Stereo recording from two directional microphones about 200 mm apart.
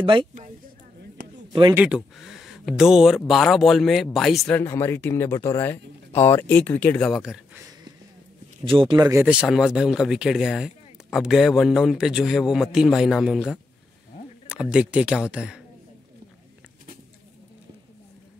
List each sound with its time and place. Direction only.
0.0 s speech: 25° right (ahead or behind)
1.5 s speech: 25° right (ahead or behind)
1.8 s speech: 5° right (ahead or behind)
8.6 s speech: 25° right (ahead or behind)
8.9 s speech: 15° right (ahead or behind)
14.5 s speech: 5° right (ahead or behind)